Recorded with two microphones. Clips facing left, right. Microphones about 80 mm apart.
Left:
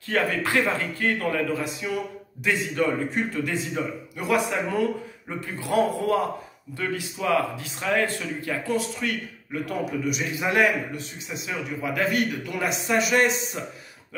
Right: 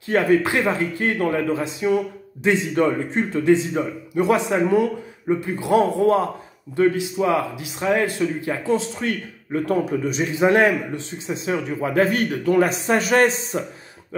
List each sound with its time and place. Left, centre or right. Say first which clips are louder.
0.1 s a man's voice: right 6 dB; right
9.5 s speech: right 7 dB; right